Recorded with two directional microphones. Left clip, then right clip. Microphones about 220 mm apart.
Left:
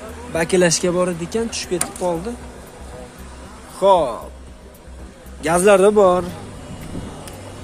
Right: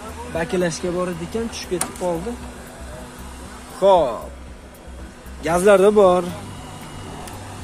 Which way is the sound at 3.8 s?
Centre (ahead or behind).